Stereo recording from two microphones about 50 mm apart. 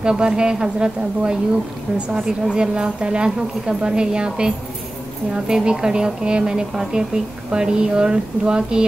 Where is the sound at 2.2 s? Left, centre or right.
Centre.